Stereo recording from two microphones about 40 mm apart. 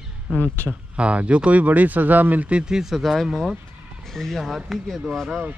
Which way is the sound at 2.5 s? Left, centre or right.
Centre.